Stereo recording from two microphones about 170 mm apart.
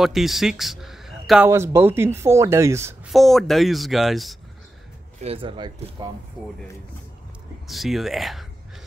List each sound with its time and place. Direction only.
0.0 s a man's voice: centre (ahead or behind)
1.5 s speech: 15° right (ahead or behind)
3.1 s speech: centre (ahead or behind)
5.2 s speech: 35° right (ahead or behind)
7.6 s speech: centre (ahead or behind)